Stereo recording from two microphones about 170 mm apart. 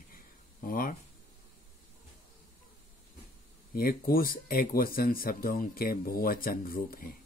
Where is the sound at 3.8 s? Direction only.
60° left (ahead or behind).